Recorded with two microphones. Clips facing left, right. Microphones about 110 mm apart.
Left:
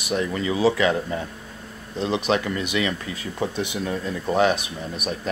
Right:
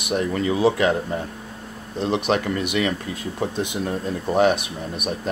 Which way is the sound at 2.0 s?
55° right (ahead or behind).